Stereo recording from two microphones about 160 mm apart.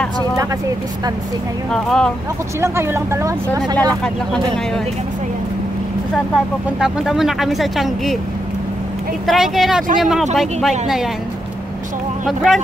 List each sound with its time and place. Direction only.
1.7 s speech: 5° left (ahead or behind)
2.6 s speech: 15° right (ahead or behind)
6.1 s speech: 5° right (ahead or behind)
9.2 s speech: centre (ahead or behind)
12.3 s speech: centre (ahead or behind)